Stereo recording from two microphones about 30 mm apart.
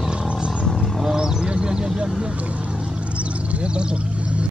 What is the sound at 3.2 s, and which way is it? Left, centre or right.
Vehicle, right.